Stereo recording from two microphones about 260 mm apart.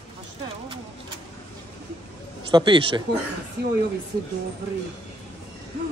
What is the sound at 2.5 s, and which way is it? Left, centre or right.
Speech, centre.